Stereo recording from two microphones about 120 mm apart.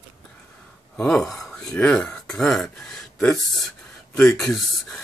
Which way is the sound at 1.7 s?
10° left (ahead or behind).